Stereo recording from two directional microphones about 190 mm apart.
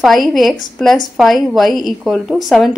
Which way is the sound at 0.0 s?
Centre (ahead or behind).